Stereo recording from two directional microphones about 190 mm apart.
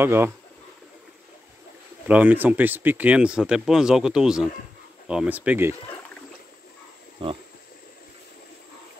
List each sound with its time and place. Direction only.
0.0 s speech: 10° right (ahead or behind)
2.0 s speech: 10° right (ahead or behind)
7.2 s pig: 30° right (ahead or behind)